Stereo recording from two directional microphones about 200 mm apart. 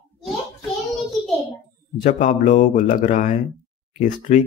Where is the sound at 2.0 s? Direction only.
40° left (ahead or behind).